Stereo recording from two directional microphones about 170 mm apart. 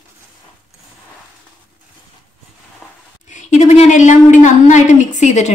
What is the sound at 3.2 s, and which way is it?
A woman's voice, 45° left (ahead or behind).